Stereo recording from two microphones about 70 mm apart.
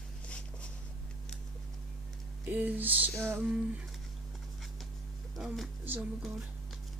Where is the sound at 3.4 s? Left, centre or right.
Centre.